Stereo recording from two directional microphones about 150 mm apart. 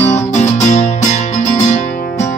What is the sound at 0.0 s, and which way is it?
Music, 50° left (ahead or behind).